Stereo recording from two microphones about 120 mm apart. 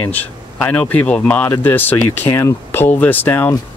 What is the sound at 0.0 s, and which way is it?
Speech, 15° left (ahead or behind).